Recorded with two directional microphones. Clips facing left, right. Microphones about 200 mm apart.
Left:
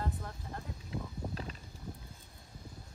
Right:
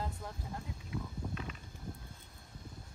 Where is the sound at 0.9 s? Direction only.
35° left (ahead or behind).